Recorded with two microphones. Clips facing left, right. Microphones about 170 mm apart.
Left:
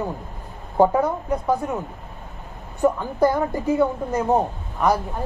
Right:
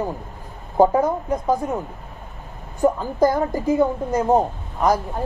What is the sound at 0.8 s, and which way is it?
Speech, 15° right (ahead or behind).